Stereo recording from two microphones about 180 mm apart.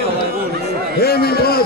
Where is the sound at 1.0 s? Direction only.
60° left (ahead or behind).